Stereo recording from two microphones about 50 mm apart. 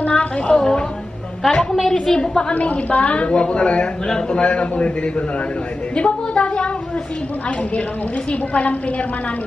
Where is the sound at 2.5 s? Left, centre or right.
Left.